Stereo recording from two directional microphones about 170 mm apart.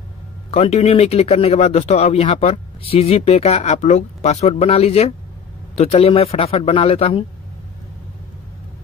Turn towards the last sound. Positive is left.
turn(degrees=35)  # may be behind; listen again after turning